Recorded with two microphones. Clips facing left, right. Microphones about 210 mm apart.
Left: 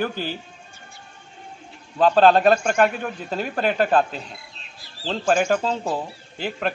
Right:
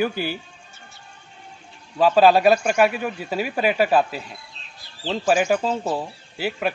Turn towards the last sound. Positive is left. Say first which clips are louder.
# right 1 dB
turn(degrees=-5)  # may be behind; listen again after turning